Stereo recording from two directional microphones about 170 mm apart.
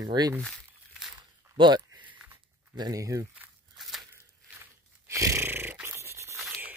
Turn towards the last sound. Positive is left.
turn(degrees=-5)  # may be behind; listen again after turning